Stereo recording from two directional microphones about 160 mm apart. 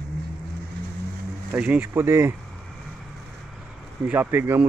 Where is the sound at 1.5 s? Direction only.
10° right (ahead or behind).